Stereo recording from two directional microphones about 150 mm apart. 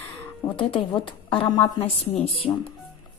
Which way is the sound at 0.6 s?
35° left (ahead or behind).